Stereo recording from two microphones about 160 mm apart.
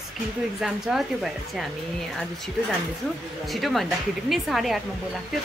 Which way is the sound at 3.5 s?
Centre (ahead or behind).